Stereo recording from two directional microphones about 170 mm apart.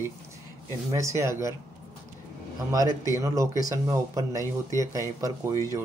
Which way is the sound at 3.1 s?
20° right (ahead or behind).